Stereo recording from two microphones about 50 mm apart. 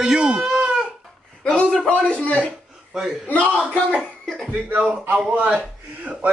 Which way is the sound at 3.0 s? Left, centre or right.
Centre.